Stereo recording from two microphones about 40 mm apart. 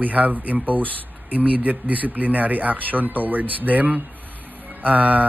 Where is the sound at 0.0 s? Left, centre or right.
Right.